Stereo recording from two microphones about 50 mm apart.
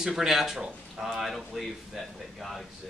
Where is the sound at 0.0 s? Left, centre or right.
Centre.